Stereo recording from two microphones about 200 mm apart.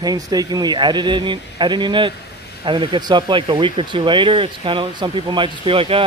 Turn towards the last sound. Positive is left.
turn(degrees=-25)  # may be behind; listen again after turning